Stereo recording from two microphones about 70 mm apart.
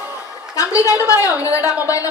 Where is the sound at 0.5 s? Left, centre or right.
Left.